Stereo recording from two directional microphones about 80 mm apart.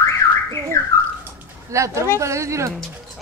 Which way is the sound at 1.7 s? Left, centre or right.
Right.